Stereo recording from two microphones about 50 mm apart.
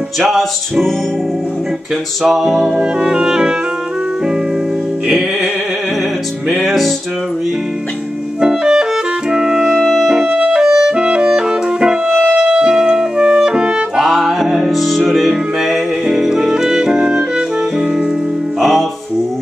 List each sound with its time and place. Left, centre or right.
0.2 s music: centre
2.2 s music: centre
6.6 s music: centre
8.4 s clarinet: centre
9.8 s music: centre
12.1 s music: centre
12.4 s music: centre
18.6 s music: centre